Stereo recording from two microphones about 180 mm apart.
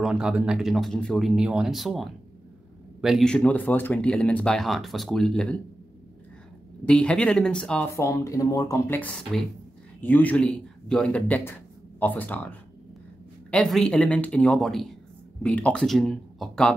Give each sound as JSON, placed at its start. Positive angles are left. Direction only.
{"t": 0.0, "sound": "speech", "side_deg": -5}
{"t": 6.9, "sound": "speech", "side_deg": 5}
{"t": 7.9, "sound": "speech", "side_deg": 15}